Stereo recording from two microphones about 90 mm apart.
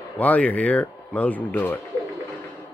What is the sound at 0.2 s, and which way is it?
Speech, 15° left (ahead or behind).